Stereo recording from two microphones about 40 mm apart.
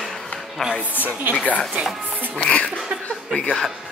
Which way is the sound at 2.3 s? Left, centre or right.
Left.